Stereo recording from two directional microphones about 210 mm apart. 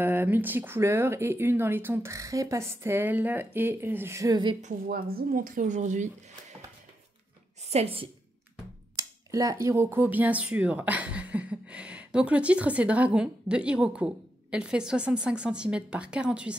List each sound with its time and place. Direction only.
0.0 s speech: 10° right (ahead or behind)
4.6 s a woman's voice: 40° right (ahead or behind)
7.7 s a woman's voice: 25° right (ahead or behind)
8.9 s speech: 15° right (ahead or behind)